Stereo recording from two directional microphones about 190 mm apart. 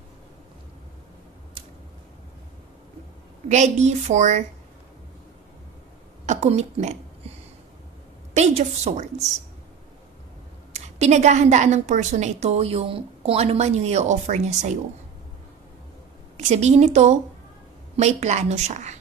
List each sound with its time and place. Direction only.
3.4 s a woman's voice: 40° right (ahead or behind)
6.2 s speech: 35° right (ahead or behind)
8.4 s a woman's voice: 40° right (ahead or behind)
10.7 s a woman's voice: 35° right (ahead or behind)
16.3 s a woman's voice: 35° right (ahead or behind)